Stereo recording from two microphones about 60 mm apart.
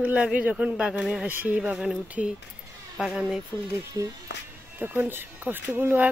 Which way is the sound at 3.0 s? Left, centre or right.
Centre.